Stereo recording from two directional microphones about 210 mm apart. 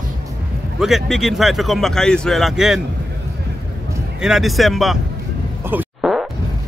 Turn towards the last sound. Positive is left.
turn(degrees=-5)  # may be behind; listen again after turning